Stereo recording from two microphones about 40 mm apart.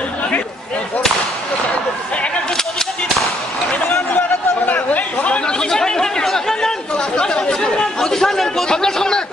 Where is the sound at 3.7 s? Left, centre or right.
Left.